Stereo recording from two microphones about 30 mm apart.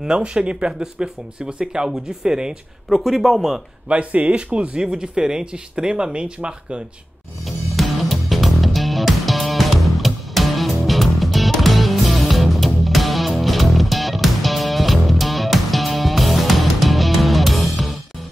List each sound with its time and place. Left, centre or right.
0.2 s speech: right
2.9 s speech: centre
3.9 s speech: right
4.8 s speech: right
7.4 s music: centre